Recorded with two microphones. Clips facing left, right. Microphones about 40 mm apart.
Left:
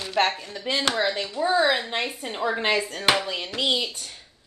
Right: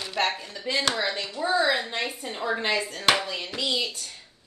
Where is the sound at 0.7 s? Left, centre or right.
Centre.